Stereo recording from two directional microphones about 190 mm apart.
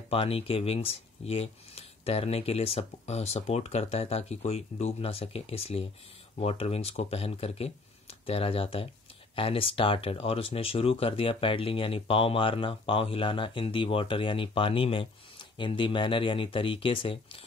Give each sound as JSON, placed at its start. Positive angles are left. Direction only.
{"t": 0.1, "sound": "speech", "side_deg": 30}